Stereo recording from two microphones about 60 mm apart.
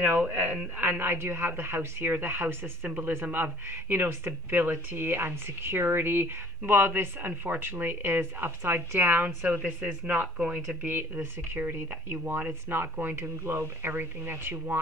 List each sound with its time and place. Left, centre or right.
0.2 s speech: right
3.7 s speech: right; by 10.9 s centre
10.9 s speech: right